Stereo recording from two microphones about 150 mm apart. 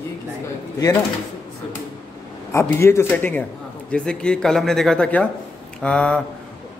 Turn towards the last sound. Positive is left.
turn(degrees=5)  # may be behind; listen again after turning